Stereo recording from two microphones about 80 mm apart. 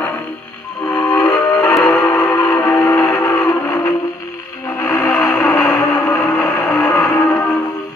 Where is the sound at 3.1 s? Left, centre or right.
Left.